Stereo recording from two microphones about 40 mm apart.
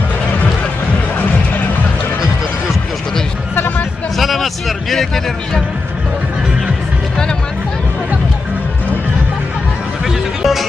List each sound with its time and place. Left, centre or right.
3.5 s music: left
4.2 s a sound: centre
10.0 s music: centre